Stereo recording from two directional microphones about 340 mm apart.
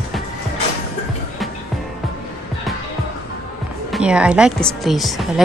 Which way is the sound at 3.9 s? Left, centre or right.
Centre.